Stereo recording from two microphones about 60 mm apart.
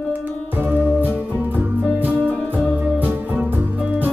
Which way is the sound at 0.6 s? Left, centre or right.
Right.